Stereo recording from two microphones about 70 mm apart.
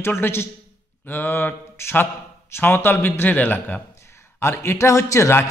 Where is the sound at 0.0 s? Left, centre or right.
Left.